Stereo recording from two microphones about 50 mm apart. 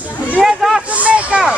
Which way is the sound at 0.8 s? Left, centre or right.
Right.